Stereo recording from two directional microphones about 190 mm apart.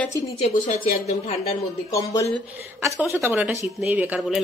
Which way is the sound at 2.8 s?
15° right (ahead or behind).